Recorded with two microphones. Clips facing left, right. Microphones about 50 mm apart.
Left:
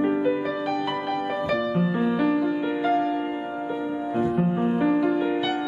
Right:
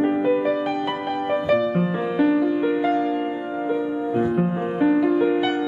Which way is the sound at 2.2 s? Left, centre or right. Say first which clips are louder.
Right 7 dB; centre.